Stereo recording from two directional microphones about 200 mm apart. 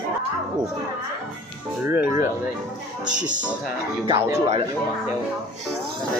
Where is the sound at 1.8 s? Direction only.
10° right (ahead or behind).